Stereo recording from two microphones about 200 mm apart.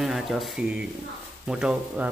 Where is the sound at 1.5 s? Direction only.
5° right (ahead or behind).